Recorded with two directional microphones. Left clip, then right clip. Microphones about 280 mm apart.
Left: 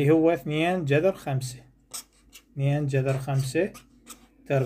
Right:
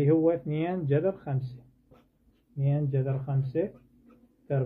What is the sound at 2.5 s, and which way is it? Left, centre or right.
Speech, left.